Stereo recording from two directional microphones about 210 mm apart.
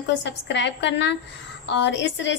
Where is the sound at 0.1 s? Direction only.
55° left (ahead or behind).